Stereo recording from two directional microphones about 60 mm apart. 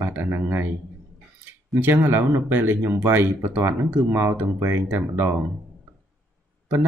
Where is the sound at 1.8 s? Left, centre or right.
Right.